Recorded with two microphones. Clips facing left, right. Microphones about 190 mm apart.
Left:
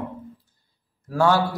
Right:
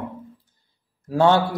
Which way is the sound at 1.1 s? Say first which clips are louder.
Right 3 dB; 25° right (ahead or behind).